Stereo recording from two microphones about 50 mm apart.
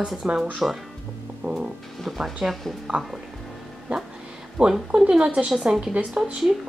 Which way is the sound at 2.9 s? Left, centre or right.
Right.